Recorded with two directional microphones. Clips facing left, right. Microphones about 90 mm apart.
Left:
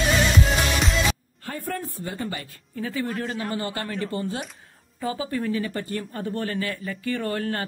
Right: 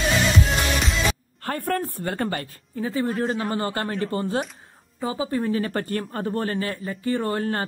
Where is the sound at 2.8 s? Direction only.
30° right (ahead or behind).